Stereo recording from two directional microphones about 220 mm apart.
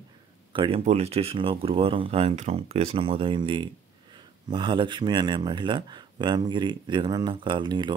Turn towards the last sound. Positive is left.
turn(degrees=-20)  # may be behind; listen again after turning